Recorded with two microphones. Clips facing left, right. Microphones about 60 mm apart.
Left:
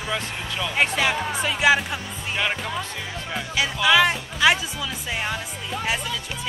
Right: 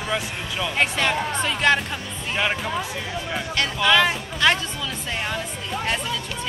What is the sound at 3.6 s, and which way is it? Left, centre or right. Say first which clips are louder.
Speech: left 1 dB; centre.